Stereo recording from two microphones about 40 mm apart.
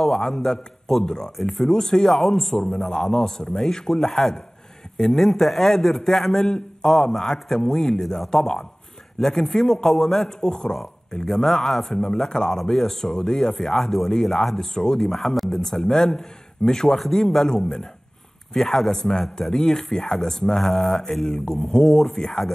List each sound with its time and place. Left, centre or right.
0.0 s speech: centre
2.8 s speech: centre
11.9 s speech: centre